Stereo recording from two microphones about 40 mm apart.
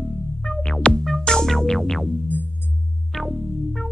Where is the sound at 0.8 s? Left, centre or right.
Left.